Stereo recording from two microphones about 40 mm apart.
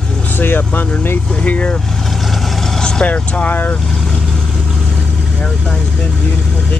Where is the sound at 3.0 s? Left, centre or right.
Left.